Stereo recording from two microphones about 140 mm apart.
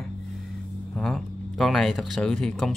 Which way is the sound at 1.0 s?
5° left (ahead or behind).